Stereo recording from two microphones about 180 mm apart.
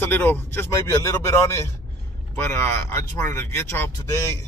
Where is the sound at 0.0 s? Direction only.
10° left (ahead or behind).